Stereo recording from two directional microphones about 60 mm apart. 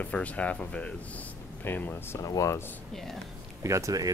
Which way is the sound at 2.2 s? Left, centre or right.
Left.